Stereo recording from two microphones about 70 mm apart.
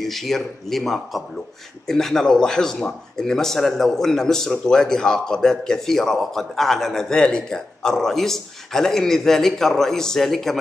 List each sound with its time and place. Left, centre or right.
0.0 s a man's voice: centre